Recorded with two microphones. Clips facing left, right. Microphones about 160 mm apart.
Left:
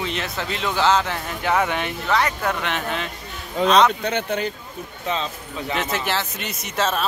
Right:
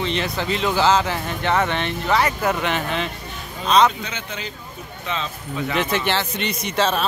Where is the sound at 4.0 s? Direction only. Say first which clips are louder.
Left 8 dB; 60° left (ahead or behind).